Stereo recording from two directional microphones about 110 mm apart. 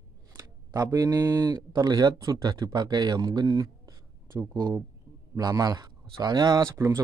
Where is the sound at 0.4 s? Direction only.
35° right (ahead or behind).